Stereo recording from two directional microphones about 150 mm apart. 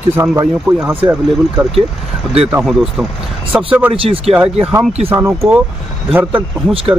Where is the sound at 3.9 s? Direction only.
40° right (ahead or behind).